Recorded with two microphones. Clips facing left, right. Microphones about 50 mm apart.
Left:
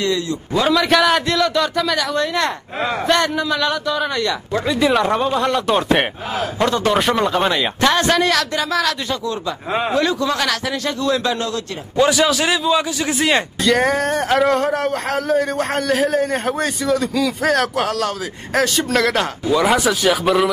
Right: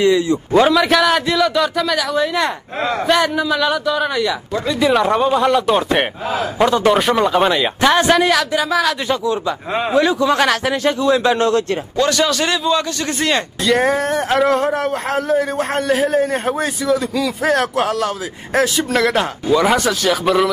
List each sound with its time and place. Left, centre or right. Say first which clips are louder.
0.0 s a man's voice: right 6 dB; centre
0.7 s a man's voice: right 1 dB; centre
9.1 s a man's voice: right 5 dB; centre
9.7 s a man's voice: left 2 dB; centre
9.9 s speech: right 6 dB; centre
10.3 s a man's voice: right 5 dB; right
11.3 s a man's voice: right 8 dB; right
12.0 s a man's voice: left 2 dB; centre